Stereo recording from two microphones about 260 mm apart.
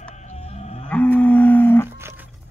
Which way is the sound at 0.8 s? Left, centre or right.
Centre.